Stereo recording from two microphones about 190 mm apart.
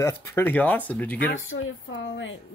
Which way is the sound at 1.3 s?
85° left.